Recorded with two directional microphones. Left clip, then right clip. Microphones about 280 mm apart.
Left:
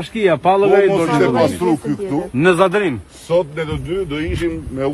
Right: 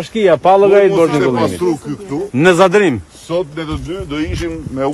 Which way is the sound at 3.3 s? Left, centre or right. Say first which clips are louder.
Left 2 dB; centre.